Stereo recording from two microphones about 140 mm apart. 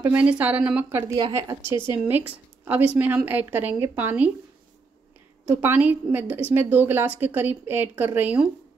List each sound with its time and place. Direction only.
0.0 s a woman's voice: 10° right (ahead or behind)
1.6 s a woman's voice: 35° left (ahead or behind)
2.0 s a woman's voice: 15° right (ahead or behind)
5.4 s a woman's voice: 15° right (ahead or behind)